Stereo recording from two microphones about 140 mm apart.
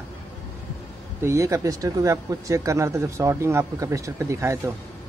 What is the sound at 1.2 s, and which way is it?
Speech, 20° right (ahead or behind).